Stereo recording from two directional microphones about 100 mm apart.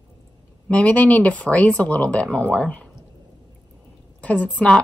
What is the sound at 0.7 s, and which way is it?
Speech, 15° left (ahead or behind).